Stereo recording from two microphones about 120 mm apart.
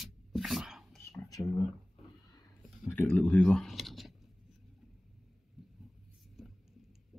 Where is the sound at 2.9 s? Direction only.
20° left (ahead or behind); by 4.1 s centre (ahead or behind).